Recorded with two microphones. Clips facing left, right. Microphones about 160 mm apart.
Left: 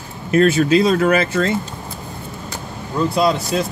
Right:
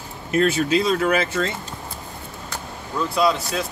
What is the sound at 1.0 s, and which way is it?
Speech, 45° left (ahead or behind).